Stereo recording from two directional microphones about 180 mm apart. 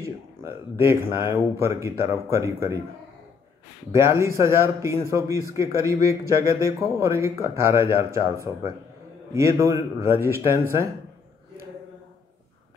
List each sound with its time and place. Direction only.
0.0 s a sound: 15° right (ahead or behind)
1.1 s speech: 15° right (ahead or behind)
3.9 s speech: 15° right (ahead or behind)